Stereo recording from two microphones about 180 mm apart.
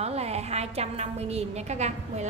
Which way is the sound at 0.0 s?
35° right (ahead or behind).